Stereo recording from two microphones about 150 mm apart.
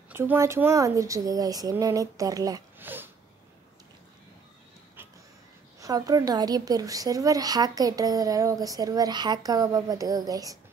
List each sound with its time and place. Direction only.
0.1 s a woman's voice: 15° right (ahead or behind)
2.8 s a sound: 15° right (ahead or behind)
5.8 s a woman's voice: 25° right (ahead or behind)